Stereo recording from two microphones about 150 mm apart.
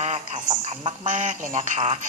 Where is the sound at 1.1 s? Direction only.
55° right (ahead or behind).